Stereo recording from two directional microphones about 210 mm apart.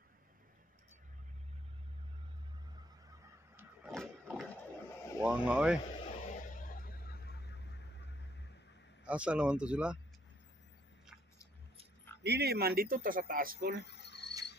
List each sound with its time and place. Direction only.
3.9 s a sound: centre (ahead or behind)
5.2 s speech: 5° right (ahead or behind)
6.0 s vehicle: 35° left (ahead or behind); by 8.1 s 55° left (ahead or behind)
9.0 s speech: 5° right (ahead or behind)
12.2 s speech: 50° right (ahead or behind)
13.8 s cricket: 55° left (ahead or behind)